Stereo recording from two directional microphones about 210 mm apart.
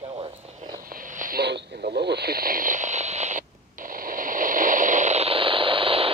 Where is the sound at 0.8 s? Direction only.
40° right (ahead or behind).